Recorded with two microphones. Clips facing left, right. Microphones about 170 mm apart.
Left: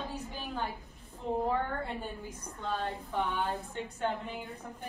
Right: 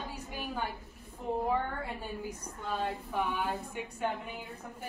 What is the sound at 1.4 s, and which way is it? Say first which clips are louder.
A woman's voice: even; 5° right (ahead or behind).